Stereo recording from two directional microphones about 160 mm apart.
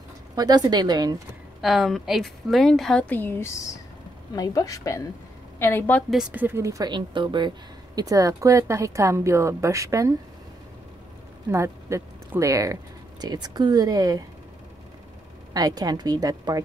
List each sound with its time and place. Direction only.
0.4 s a woman's voice: 25° right (ahead or behind)
1.6 s a woman's voice: centre (ahead or behind)
6.1 s a woman's voice: 10° right (ahead or behind)
11.5 s a woman's voice: 15° right (ahead or behind)
15.5 s a woman's voice: 25° right (ahead or behind)